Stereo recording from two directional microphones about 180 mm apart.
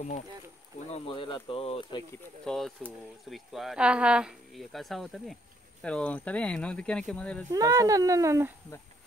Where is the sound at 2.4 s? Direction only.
5° left (ahead or behind).